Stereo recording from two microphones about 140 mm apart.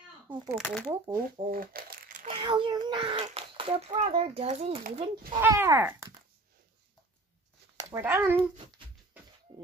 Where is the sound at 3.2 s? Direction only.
40° right (ahead or behind).